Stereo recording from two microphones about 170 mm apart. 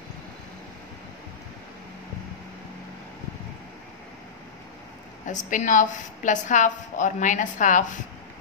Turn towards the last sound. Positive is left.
turn(degrees=45)  # may be behind; listen again after turning